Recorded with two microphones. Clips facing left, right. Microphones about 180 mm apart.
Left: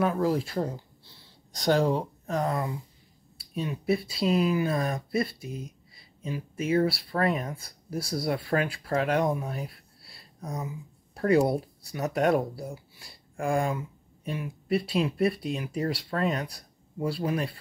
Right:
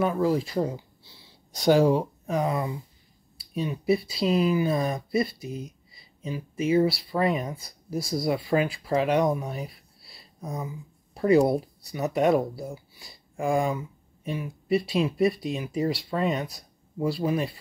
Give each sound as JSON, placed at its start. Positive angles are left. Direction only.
{"t": 0.0, "sound": "speech", "side_deg": 0}
{"t": 6.2, "sound": "speech", "side_deg": 0}
{"t": 9.3, "sound": "a sound", "side_deg": 0}
{"t": 11.1, "sound": "speech", "side_deg": 0}